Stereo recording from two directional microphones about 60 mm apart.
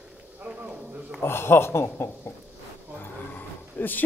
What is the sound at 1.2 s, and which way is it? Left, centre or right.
Speech, left.